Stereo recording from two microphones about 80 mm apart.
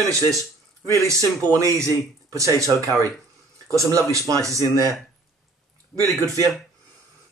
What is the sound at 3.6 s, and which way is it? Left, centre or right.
Speech, right.